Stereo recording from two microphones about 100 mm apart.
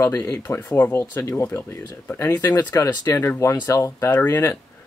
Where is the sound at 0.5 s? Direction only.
20° left (ahead or behind).